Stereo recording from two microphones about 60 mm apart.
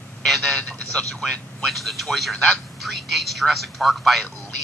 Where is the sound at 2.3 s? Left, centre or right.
Left.